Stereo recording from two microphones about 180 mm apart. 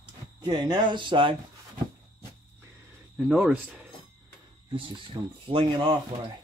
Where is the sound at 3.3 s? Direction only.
5° right (ahead or behind).